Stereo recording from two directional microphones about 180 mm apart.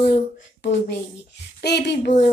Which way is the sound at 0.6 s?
70° left (ahead or behind).